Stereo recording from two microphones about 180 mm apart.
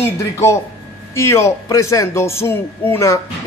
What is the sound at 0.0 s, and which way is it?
A man's voice, 15° left (ahead or behind).